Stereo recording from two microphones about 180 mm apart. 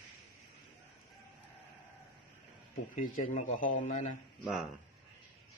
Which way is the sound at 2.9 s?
45° left (ahead or behind).